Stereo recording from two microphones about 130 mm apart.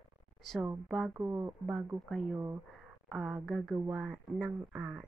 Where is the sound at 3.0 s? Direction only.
5° right (ahead or behind).